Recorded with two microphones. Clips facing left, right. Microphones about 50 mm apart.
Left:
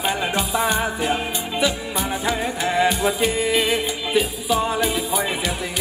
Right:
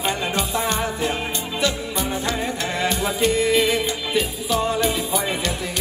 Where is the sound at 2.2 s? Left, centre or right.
Centre.